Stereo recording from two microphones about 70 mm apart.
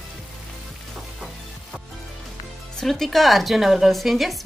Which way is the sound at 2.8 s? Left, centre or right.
Centre.